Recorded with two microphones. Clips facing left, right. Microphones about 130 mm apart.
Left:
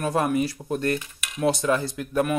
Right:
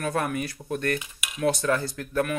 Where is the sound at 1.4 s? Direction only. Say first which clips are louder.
Left 2 dB; 20° left (ahead or behind).